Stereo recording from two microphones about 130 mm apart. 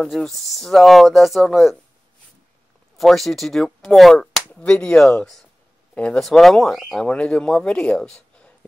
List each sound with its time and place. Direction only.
0.0 s speech: 5° left (ahead or behind)
3.0 s speech: centre (ahead or behind)